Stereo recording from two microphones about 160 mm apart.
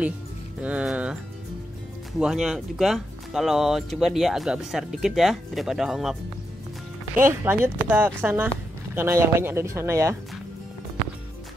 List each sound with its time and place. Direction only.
0.6 s speech: 10° right (ahead or behind)
2.1 s speech: 5° right (ahead or behind)
7.2 s speech: 15° right (ahead or behind)